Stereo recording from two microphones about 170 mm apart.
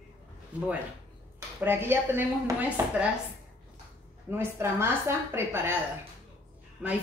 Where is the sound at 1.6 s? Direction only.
10° right (ahead or behind).